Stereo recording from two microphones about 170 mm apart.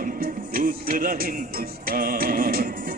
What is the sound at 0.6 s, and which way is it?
Music, 60° right (ahead or behind).